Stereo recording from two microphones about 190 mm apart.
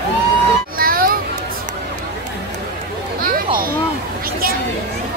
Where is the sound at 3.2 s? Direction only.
50° right (ahead or behind).